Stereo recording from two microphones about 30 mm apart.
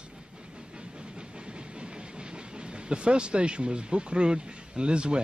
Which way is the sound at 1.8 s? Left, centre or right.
Right.